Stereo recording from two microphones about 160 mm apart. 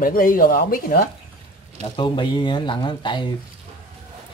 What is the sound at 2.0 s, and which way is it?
Speech, 30° left (ahead or behind).